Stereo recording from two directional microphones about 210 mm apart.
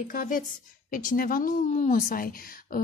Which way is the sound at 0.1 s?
40° left (ahead or behind).